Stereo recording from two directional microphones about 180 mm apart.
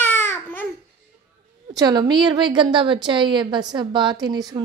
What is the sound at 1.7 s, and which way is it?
A woman's voice, 20° right (ahead or behind).